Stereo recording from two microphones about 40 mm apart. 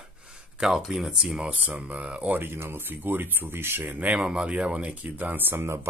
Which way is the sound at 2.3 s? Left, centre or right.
Right.